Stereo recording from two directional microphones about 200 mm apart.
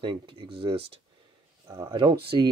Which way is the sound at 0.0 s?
25° right (ahead or behind).